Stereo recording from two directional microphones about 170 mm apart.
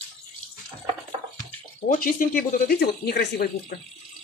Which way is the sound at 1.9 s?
55° left (ahead or behind).